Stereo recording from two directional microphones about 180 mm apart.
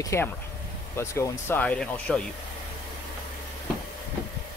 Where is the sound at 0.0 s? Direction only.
15° left (ahead or behind).